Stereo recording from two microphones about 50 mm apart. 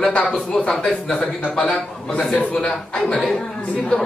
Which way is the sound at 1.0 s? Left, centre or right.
Centre.